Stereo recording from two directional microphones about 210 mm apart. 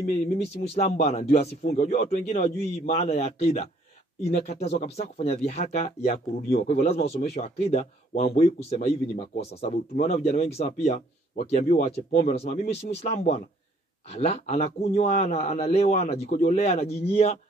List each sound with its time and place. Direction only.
0.1 s speech: 30° left (ahead or behind)